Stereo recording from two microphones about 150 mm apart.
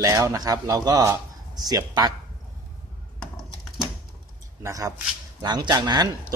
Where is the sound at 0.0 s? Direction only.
20° right (ahead or behind).